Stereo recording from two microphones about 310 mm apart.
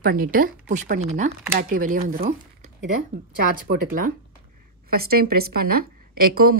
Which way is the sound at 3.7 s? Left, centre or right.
Right.